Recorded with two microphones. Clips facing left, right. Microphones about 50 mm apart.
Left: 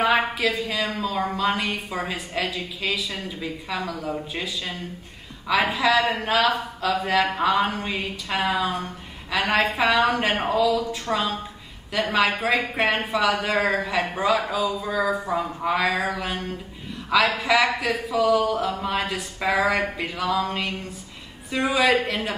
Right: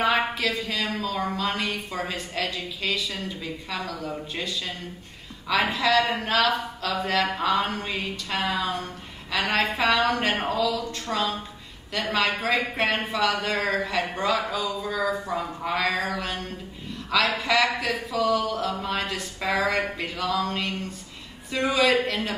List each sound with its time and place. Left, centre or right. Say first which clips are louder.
0.0 s a woman's voice: left 2 dB; centre
10.1 s a woman's voice: left 2 dB; centre
10.4 s a woman's voice: left 4 dB; centre